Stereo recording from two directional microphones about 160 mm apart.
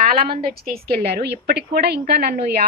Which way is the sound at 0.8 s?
80° right.